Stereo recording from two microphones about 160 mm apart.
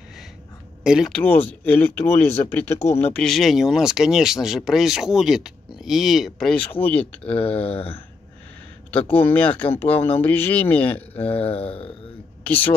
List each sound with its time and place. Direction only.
0.8 s speech: centre (ahead or behind)
1.6 s speech: 10° left (ahead or behind)
7.2 s speech: 35° left (ahead or behind)
8.9 s speech: 10° left (ahead or behind)
11.2 s speech: 35° left (ahead or behind)